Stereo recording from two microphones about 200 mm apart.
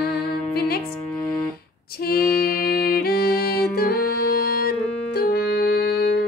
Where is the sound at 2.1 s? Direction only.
50° left (ahead or behind).